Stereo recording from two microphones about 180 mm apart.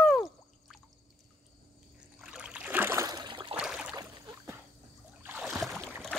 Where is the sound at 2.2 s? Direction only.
5° right (ahead or behind); by 3.6 s 25° right (ahead or behind).